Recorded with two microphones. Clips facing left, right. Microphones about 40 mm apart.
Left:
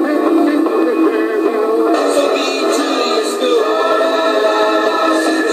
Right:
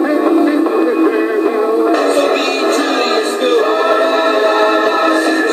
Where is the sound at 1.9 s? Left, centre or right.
Right.